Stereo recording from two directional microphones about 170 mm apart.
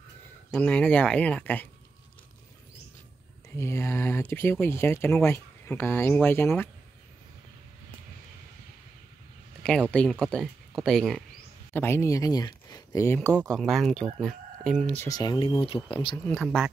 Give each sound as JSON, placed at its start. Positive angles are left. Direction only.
{"t": 0.5, "sound": "speech", "side_deg": 10}
{"t": 3.4, "sound": "speech", "side_deg": 15}
{"t": 9.6, "sound": "speech", "side_deg": 5}
{"t": 11.7, "sound": "speech", "side_deg": 15}
{"t": 15.0, "sound": "speech", "side_deg": 25}